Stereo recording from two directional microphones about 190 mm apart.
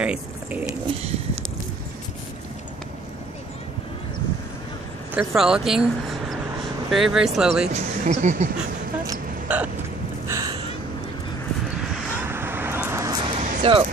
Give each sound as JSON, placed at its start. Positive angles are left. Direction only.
{"t": 0.0, "sound": "speech", "side_deg": -5}
{"t": 5.1, "sound": "speech", "side_deg": -5}
{"t": 7.7, "sound": "speech", "side_deg": -40}
{"t": 9.5, "sound": "hiccup", "side_deg": -5}
{"t": 10.2, "sound": "gasp", "side_deg": -15}
{"t": 12.3, "sound": "vehicle", "side_deg": -10}
{"t": 13.2, "sound": "a sound", "side_deg": -35}